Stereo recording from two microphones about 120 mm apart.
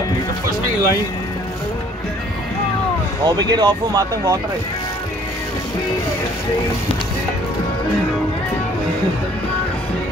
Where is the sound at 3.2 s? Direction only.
35° right (ahead or behind).